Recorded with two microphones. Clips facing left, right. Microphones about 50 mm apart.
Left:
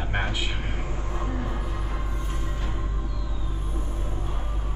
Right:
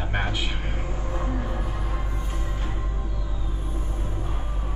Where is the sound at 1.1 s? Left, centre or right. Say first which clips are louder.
Right 1 dB; centre.